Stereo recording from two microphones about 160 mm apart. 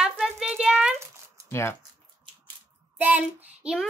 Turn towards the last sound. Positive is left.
turn(degrees=-5)  # may be behind; listen again after turning